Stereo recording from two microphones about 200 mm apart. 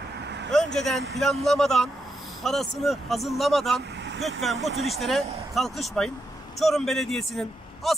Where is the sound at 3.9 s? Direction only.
60° right (ahead or behind).